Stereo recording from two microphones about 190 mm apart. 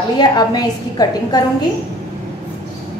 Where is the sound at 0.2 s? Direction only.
20° left (ahead or behind).